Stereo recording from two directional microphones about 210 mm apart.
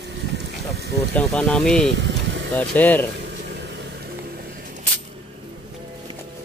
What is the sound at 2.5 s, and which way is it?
Speech, 5° left (ahead or behind).